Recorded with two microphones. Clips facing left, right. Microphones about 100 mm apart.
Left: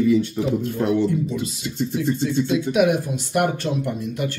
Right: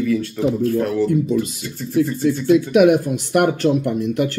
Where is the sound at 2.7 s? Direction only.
55° right (ahead or behind).